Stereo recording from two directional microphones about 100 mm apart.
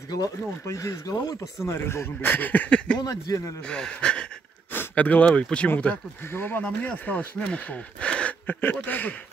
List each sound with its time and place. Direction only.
0.1 s speech: 35° left (ahead or behind)
1.7 s speech: 25° left (ahead or behind)
3.0 s speech: 40° left (ahead or behind)
3.6 s speech: 10° left (ahead or behind)